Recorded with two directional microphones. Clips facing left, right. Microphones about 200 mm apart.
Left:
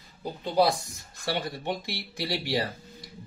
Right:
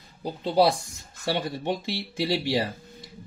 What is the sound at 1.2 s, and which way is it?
Speech, 20° right (ahead or behind).